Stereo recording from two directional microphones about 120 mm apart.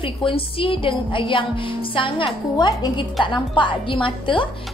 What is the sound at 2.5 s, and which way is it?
Speech, 30° left (ahead or behind).